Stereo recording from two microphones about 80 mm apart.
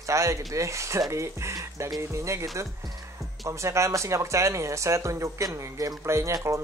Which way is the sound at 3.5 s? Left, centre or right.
Right.